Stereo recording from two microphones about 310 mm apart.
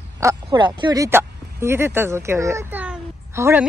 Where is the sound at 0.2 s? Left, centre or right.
Centre.